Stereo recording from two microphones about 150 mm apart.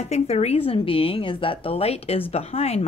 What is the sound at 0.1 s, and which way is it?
A woman's voice, 45° left (ahead or behind).